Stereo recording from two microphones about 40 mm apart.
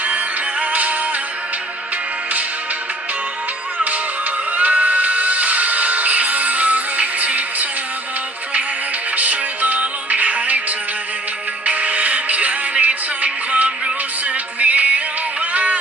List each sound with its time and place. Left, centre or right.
0.0 s music: right
4.6 s music: right
9.1 s music: right
11.6 s music: right
15.5 s a sound: right